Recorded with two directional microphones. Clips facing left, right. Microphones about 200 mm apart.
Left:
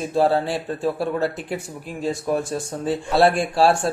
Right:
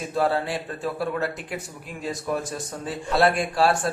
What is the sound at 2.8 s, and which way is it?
Speech, 30° left (ahead or behind).